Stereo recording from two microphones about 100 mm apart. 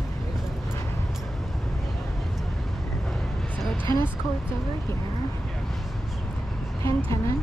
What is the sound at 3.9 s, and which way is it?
Speech, 25° left (ahead or behind).